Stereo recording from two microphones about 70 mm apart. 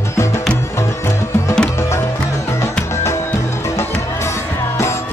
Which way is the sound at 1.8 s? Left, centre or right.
Left.